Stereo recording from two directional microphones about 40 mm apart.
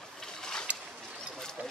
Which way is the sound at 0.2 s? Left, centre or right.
Centre.